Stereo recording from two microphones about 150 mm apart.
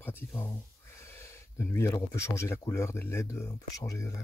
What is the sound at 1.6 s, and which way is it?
Speech, 15° left (ahead or behind).